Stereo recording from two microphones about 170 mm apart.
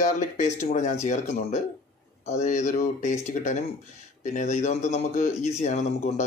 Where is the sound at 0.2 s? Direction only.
45° left (ahead or behind).